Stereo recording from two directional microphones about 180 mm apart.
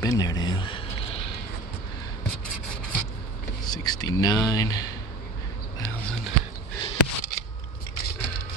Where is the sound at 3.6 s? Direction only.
20° left (ahead or behind).